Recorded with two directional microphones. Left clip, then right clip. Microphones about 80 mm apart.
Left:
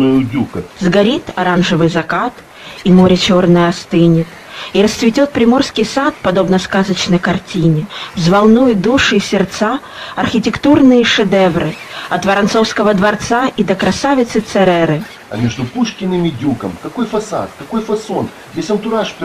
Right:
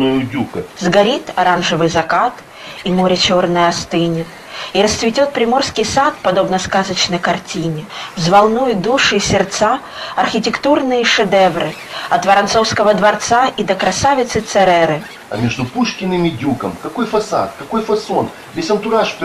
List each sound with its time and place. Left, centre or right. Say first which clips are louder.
0.0 s speech: left 3 dB; left
3.1 s speech: right 3 dB; left
3.5 s speech: left 1 dB; left
8.2 s speech: even; left
9.1 s speech: even; left
10.6 s speech: left 5 dB; left
15.4 s speech: even; left